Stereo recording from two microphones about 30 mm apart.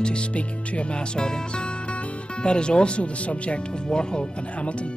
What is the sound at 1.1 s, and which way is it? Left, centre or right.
Speech, left.